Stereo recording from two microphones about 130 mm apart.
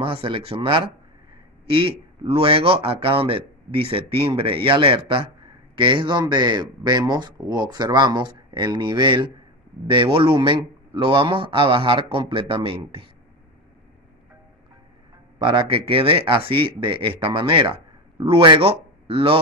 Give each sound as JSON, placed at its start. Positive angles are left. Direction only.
{"t": 0.0, "sound": "speech", "side_deg": -45}
{"t": 15.3, "sound": "speech", "side_deg": -40}